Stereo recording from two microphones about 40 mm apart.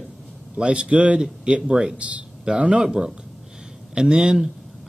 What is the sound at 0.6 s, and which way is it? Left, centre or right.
A man's voice, right.